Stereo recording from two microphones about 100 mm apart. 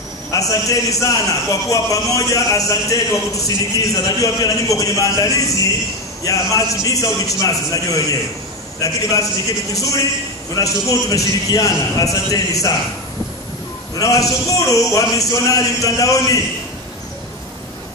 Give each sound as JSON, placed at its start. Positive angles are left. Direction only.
{"t": 0.3, "sound": "a man's voice", "side_deg": 35}
{"t": 10.5, "sound": "a man's voice", "side_deg": 35}
{"t": 13.9, "sound": "a man's voice", "side_deg": 35}